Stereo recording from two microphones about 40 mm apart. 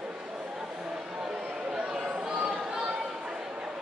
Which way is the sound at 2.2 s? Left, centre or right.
Centre.